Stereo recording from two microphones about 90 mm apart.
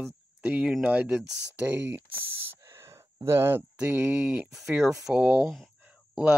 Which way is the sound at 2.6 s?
35° right (ahead or behind).